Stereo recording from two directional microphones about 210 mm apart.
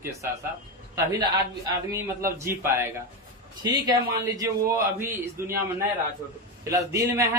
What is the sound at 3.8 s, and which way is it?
A man's voice, 15° right (ahead or behind).